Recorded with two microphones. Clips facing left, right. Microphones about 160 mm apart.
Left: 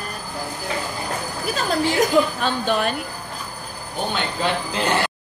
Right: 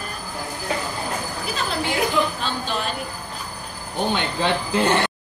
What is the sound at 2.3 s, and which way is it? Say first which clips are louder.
Speech: left 5 dB; 55° left (ahead or behind).